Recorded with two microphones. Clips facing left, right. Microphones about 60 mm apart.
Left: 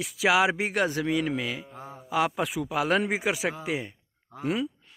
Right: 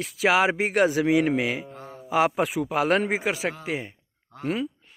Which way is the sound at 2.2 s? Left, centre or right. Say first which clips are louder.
Right 4 dB; centre.